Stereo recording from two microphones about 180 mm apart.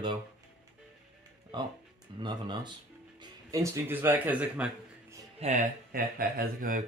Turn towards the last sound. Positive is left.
turn(degrees=-50)  # may be behind; listen again after turning